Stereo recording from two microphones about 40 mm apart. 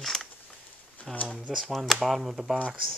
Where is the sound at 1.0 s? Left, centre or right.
Left.